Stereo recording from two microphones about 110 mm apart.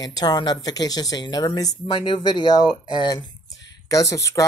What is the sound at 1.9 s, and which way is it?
Speech, 50° left (ahead or behind).